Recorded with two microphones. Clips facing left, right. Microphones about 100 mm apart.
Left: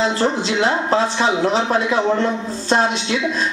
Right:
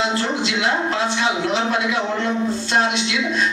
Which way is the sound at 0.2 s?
35° left (ahead or behind).